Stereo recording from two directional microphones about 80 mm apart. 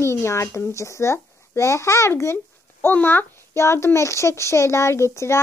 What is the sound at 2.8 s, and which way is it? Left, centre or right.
A child's voice, left.